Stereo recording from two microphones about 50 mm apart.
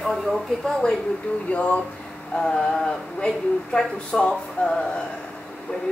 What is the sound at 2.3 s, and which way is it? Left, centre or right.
Speech, centre.